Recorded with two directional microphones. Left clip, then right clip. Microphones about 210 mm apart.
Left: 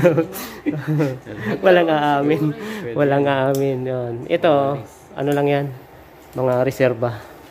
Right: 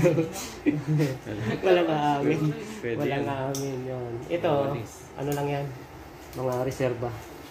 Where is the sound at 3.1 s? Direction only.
50° left (ahead or behind).